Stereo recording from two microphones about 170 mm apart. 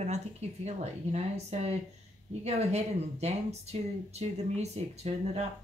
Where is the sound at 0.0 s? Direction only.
40° right (ahead or behind).